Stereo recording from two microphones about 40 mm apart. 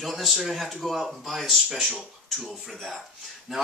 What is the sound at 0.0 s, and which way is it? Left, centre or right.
Speech, centre.